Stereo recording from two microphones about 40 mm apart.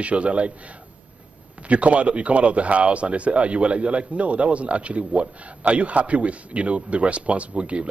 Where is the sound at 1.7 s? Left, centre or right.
Right.